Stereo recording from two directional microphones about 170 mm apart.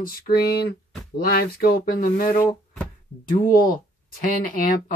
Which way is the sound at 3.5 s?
55° left (ahead or behind).